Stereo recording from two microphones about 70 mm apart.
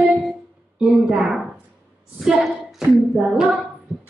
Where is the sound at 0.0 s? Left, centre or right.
Centre.